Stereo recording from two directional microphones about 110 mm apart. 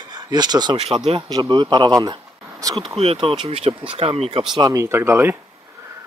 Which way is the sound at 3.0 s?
60° right (ahead or behind).